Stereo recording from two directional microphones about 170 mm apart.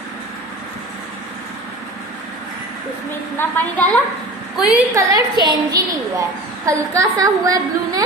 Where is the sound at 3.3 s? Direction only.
10° left (ahead or behind).